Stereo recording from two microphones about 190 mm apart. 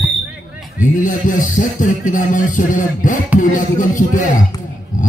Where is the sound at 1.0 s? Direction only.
45° left (ahead or behind).